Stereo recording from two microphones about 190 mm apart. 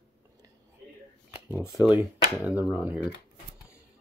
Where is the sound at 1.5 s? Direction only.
15° right (ahead or behind).